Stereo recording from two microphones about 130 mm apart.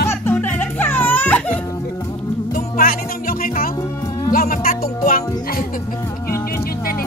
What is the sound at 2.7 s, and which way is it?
Music, 90° left.